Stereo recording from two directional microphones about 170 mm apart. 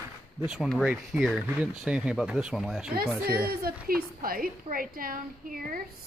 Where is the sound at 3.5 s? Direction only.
60° right (ahead or behind).